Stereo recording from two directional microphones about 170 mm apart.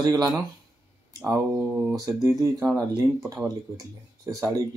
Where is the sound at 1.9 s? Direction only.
20° right (ahead or behind).